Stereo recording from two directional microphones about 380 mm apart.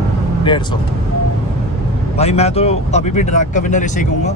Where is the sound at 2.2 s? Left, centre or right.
Centre.